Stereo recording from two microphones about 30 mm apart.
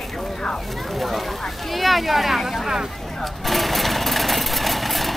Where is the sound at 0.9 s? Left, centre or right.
Centre.